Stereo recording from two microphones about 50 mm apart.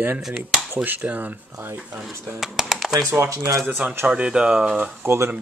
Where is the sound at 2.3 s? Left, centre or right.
Centre.